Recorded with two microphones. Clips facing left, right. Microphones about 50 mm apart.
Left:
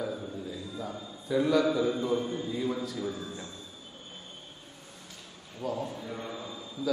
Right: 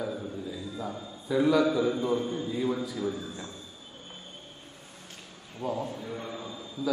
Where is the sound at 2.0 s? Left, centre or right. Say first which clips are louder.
Right 1 dB; centre.